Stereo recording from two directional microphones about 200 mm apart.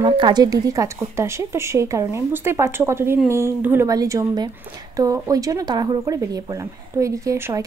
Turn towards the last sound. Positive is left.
turn(degrees=-15)  # may be behind; listen again after turning